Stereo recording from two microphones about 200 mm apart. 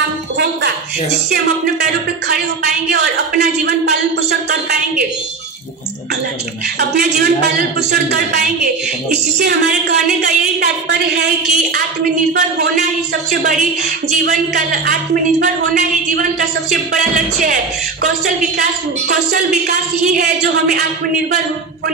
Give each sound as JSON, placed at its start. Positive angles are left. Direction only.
{"t": 1.3, "sound": "speech", "side_deg": -50}
{"t": 6.8, "sound": "speech", "side_deg": -55}
{"t": 16.9, "sound": "speech", "side_deg": -40}
{"t": 19.3, "sound": "speech", "side_deg": -45}